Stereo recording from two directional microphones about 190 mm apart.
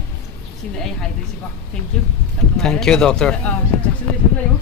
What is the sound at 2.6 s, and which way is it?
Speech, 5° left (ahead or behind).